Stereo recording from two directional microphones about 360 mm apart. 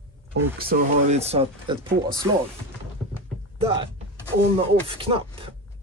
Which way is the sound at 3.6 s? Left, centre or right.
Centre.